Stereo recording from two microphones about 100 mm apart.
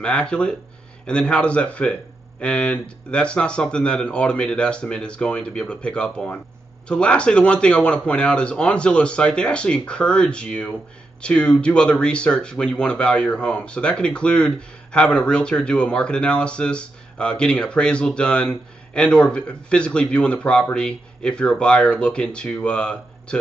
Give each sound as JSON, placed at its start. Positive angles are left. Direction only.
{"t": 0.0, "sound": "speech", "side_deg": 10}